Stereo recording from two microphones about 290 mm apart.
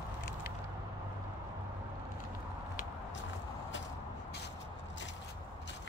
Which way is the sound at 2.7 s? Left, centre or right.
Left.